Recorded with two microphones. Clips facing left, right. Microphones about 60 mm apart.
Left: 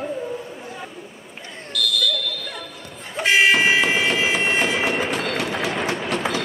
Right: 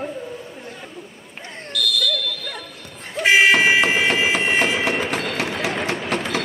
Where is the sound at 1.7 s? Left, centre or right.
Centre.